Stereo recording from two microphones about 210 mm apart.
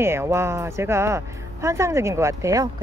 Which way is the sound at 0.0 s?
10° right (ahead or behind).